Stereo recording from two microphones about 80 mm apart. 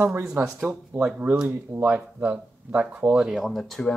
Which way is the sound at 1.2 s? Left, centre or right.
Right.